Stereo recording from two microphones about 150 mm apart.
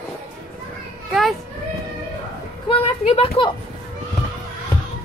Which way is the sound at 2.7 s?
40° left (ahead or behind).